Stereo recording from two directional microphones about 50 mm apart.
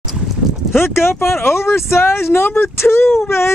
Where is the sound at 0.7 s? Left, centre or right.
Left.